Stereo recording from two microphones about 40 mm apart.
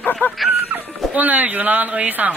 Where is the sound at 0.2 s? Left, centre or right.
Left.